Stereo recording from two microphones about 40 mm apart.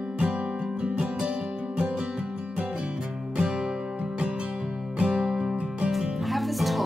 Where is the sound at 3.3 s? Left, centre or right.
Centre.